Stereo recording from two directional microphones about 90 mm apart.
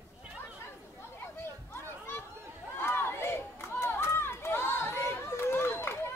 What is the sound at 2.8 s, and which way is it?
Run, 25° left (ahead or behind).